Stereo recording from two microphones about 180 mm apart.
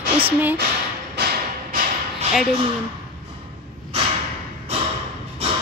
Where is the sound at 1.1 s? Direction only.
55° right (ahead or behind).